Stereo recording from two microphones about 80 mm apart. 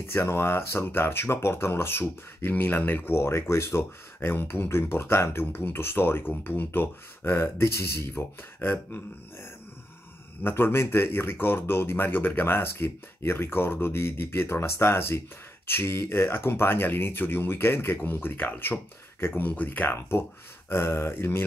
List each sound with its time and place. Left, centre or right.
0.0 s speech: left
10.4 s speech: left